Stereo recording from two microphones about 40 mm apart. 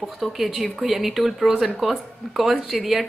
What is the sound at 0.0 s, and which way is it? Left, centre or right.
Speech, centre.